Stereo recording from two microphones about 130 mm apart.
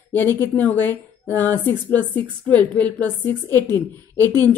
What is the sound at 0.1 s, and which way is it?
Speech, 15° left (ahead or behind).